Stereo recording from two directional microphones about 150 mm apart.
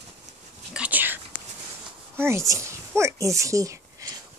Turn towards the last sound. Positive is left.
turn(degrees=-20)  # may be behind; listen again after turning